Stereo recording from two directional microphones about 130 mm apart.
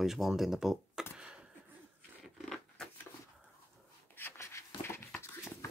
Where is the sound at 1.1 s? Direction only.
5° right (ahead or behind).